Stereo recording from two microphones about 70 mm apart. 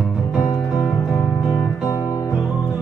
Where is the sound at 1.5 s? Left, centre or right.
Left.